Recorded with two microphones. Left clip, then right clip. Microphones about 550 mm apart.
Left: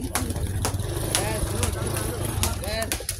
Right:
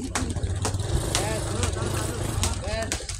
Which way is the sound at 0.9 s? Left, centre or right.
Left.